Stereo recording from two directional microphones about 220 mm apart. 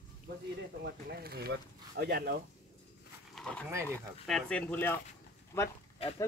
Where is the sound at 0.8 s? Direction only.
45° right (ahead or behind).